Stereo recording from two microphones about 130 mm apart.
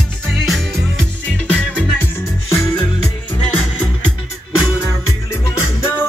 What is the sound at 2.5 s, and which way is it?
Music, 20° left (ahead or behind).